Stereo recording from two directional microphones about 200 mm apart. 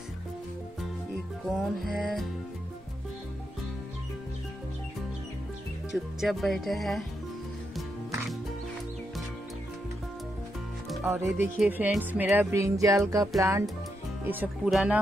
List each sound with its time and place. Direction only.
1.5 s speech: centre (ahead or behind)
6.2 s speech: centre (ahead or behind)
11.1 s music: 10° right (ahead or behind)